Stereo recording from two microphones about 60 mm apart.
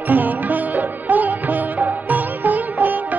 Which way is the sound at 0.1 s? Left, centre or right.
Right.